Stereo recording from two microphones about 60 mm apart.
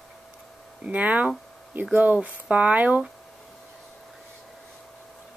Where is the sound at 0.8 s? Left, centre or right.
Right.